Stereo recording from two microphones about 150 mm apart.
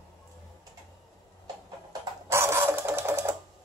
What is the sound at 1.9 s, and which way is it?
Sewing machine, 15° right (ahead or behind).